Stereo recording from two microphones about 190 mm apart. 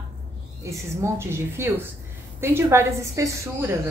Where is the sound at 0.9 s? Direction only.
15° right (ahead or behind).